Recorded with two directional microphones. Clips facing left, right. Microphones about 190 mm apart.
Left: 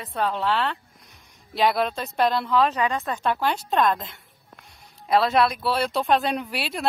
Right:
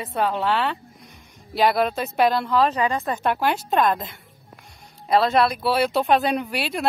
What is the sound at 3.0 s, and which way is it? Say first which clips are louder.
A woman's voice: right 2 dB; 10° right (ahead or behind).